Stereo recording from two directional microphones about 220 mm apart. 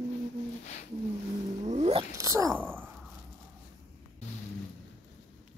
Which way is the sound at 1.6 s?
30° right (ahead or behind).